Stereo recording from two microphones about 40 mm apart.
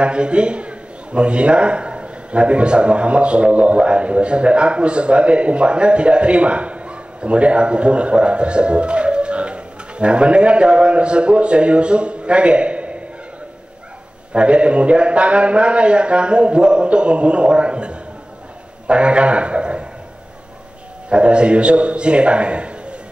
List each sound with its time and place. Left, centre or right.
0.0 s a man's voice: right
14.3 s a man's voice: right
21.1 s a man's voice: right